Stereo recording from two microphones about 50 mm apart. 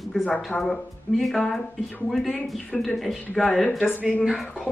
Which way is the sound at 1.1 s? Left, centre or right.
Centre.